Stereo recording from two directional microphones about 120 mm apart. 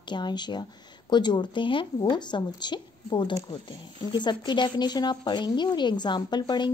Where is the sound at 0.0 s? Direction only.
40° left (ahead or behind).